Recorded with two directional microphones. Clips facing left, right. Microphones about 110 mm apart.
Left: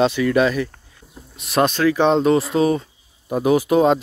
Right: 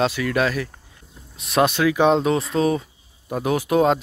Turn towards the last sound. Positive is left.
turn(degrees=0)  # may be behind; listen again after turning